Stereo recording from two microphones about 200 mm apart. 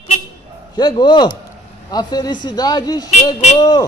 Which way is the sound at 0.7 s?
20° left (ahead or behind).